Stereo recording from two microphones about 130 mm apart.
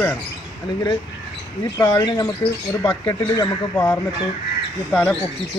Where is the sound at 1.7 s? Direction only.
25° left (ahead or behind).